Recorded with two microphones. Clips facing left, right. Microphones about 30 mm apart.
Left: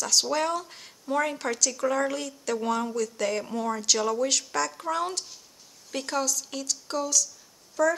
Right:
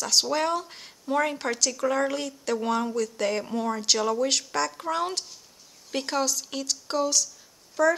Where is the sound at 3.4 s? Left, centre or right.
Centre.